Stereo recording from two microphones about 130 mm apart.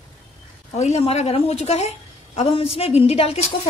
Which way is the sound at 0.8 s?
55° left (ahead or behind).